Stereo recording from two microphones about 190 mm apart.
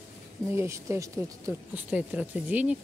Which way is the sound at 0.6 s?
15° right (ahead or behind).